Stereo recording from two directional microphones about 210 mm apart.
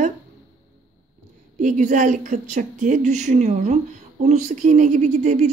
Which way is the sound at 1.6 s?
35° right (ahead or behind).